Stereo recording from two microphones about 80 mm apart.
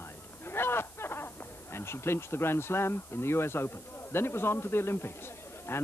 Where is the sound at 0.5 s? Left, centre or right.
Left.